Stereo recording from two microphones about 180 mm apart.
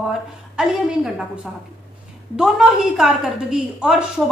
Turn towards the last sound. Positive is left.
turn(degrees=-5)  # may be behind; listen again after turning